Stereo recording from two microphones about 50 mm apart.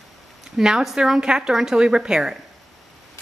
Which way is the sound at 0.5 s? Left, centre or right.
Centre.